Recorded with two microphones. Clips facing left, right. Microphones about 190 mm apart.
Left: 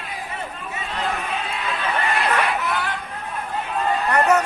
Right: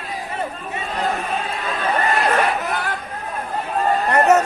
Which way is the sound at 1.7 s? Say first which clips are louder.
Right 4 dB; 45° right (ahead or behind).